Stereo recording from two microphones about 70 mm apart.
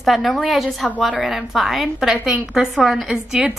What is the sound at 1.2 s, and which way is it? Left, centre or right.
Speech, centre.